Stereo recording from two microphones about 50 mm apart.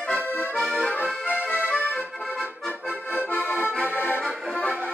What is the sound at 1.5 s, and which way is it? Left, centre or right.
Accordion, left.